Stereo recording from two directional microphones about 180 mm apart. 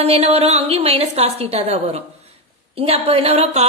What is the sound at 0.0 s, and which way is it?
A woman's voice, 35° right (ahead or behind).